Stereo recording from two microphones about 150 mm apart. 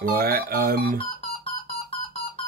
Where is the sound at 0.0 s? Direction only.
90° right.